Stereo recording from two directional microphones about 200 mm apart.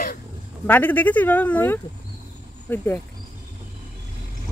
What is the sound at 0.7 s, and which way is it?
Speech, 10° left (ahead or behind).